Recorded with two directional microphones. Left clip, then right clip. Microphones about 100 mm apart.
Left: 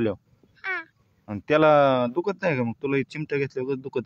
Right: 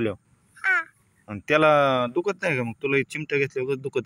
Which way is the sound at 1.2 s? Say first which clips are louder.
Even; 25° left (ahead or behind).